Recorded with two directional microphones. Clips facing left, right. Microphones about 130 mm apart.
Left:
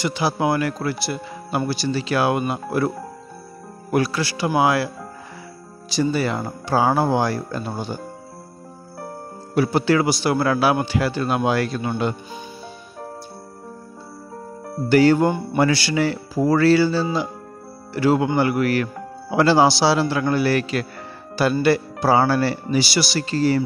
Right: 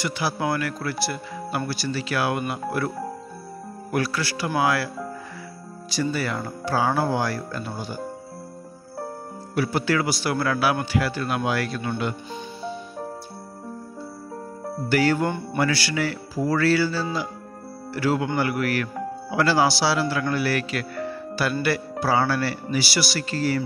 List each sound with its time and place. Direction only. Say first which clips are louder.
0.0 s a man's voice: left 5 dB; 20° left (ahead or behind)
3.9 s a man's voice: left 5 dB; 20° left (ahead or behind)
5.9 s a man's voice: left 5 dB; 25° left (ahead or behind)
9.6 s a man's voice: left 5 dB; 25° left (ahead or behind)
14.9 s a man's voice: left 6 dB; 25° left (ahead or behind)